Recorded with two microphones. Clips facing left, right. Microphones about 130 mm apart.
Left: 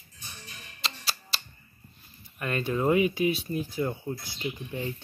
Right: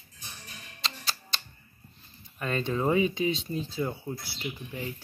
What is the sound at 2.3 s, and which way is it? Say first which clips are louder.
Speech: even; 10° left (ahead or behind).